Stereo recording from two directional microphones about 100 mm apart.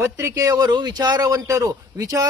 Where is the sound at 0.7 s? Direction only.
45° right (ahead or behind).